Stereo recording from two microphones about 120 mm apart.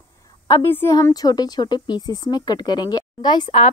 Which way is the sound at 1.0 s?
30° left (ahead or behind).